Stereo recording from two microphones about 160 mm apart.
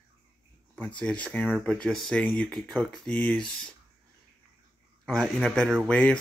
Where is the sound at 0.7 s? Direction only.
5° left (ahead or behind).